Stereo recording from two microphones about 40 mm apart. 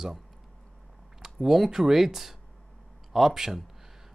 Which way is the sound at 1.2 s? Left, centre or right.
Centre.